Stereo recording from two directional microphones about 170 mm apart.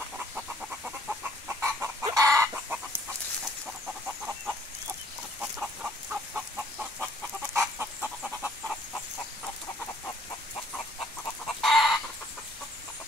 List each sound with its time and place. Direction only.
0.3 s chicken: 5° right (ahead or behind)
1.6 s chicken: 15° right (ahead or behind)
3.6 s fowl: 5° right (ahead or behind)
5.4 s a sound: 5° right (ahead or behind)
7.5 s chicken: 10° right (ahead or behind)
8.2 s a sound: 5° left (ahead or behind)
11.6 s chicken: centre (ahead or behind)